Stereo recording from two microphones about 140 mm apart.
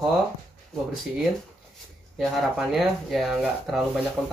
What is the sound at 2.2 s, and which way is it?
Speech, centre (ahead or behind).